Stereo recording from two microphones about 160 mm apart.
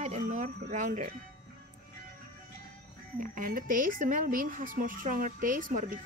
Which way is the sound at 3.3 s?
60° right (ahead or behind).